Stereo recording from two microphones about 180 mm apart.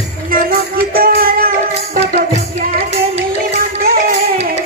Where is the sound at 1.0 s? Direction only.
55° right (ahead or behind).